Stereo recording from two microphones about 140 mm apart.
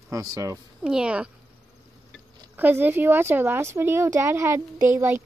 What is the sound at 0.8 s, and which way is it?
Speech, 5° right (ahead or behind).